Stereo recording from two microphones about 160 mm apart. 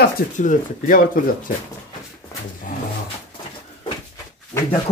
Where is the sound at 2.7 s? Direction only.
60° left (ahead or behind).